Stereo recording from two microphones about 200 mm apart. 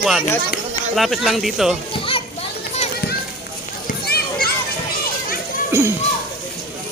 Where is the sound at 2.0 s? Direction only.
25° left (ahead or behind).